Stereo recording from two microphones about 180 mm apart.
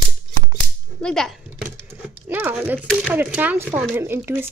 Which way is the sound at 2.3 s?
10° right (ahead or behind).